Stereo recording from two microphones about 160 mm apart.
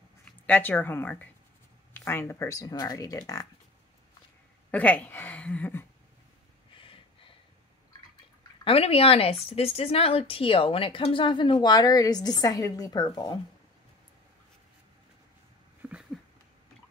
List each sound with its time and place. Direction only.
0.2 s speech: 10° left (ahead or behind)
4.6 s a woman's voice: 10° left (ahead or behind)
6.7 s gasp: 35° left (ahead or behind)
8.6 s speech: 35° left (ahead or behind)
15.8 s a sound: 5° right (ahead or behind)